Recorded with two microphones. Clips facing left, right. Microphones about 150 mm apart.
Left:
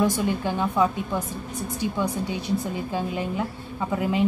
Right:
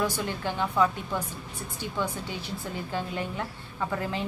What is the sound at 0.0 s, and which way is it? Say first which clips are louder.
A woman's voice: left 6 dB; 20° left (ahead or behind).